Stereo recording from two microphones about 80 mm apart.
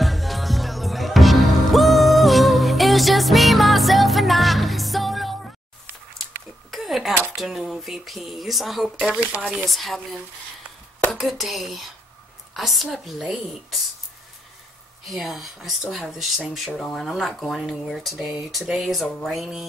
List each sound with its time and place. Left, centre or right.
0.0 s music: centre
6.7 s a sound: centre
7.3 s speech: centre
9.1 s speech: centre
9.7 s speech: centre
11.1 s speech: centre
15.0 s speech: centre